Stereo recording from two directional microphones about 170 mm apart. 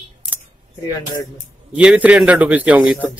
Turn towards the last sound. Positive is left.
turn(degrees=-10)  # may be behind; listen again after turning